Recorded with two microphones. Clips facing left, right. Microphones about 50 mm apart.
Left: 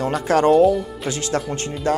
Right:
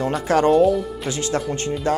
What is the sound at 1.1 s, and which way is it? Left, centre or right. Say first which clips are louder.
Speech: even; left.